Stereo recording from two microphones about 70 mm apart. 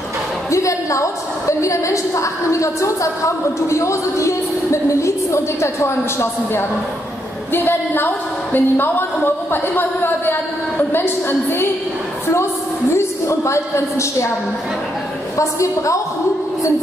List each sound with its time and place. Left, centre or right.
0.5 s a sound: left
1.6 s a woman's voice: left
12.9 s a woman's voice: left
15.3 s a woman's voice: left